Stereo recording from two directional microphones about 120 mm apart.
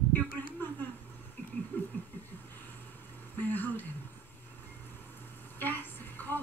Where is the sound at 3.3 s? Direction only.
15° left (ahead or behind).